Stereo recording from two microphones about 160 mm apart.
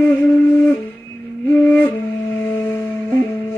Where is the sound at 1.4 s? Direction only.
10° left (ahead or behind).